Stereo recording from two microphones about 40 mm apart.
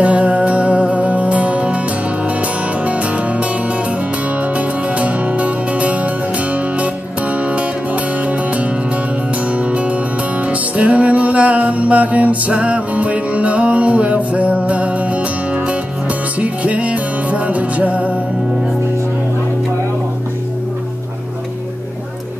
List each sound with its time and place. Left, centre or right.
0.0 s music: right